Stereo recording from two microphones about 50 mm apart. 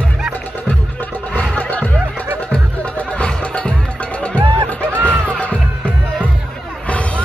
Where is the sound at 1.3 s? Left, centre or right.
Left.